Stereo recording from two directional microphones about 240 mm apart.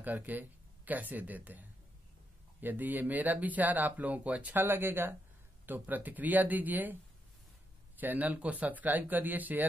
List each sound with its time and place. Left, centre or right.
0.0 s speech: centre
8.0 s speech: centre